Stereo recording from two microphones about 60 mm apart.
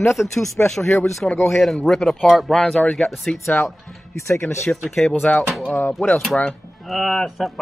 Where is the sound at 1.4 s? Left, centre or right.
Centre.